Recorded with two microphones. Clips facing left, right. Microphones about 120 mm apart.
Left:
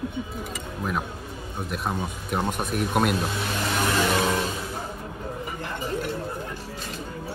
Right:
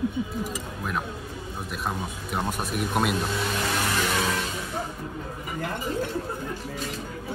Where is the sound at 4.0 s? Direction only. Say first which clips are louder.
Left 3 dB; 25° left (ahead or behind).